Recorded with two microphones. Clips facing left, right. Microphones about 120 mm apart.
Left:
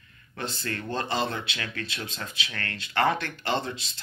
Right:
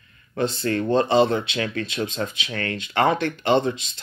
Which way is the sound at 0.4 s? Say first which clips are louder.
Right 11 dB; 25° right (ahead or behind).